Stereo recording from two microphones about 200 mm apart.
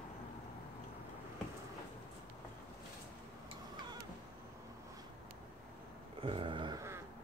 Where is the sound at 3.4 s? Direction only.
20° right (ahead or behind).